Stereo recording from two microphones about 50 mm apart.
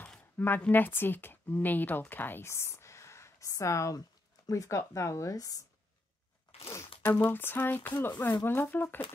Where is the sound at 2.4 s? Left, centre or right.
Left.